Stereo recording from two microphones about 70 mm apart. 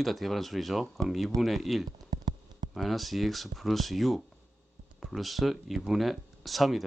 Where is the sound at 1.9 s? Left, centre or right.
Right.